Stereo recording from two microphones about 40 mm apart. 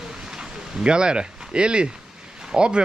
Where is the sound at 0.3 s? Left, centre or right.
Centre.